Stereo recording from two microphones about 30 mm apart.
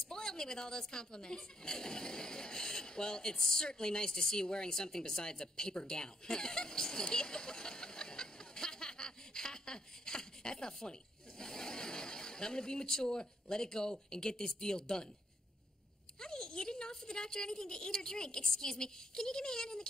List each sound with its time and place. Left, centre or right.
0.1 s speech: left
5.9 s a sound: left
10.6 s speech: left
16.2 s speech: left